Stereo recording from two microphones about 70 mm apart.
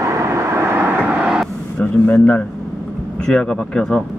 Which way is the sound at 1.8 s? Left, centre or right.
Left.